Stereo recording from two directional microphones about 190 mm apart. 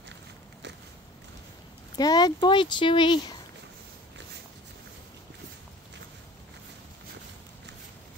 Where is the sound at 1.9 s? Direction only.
20° left (ahead or behind).